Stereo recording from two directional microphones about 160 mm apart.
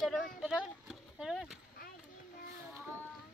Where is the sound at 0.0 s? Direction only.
5° left (ahead or behind).